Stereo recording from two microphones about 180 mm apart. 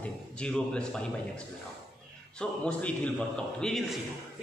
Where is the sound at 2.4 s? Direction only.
5° left (ahead or behind).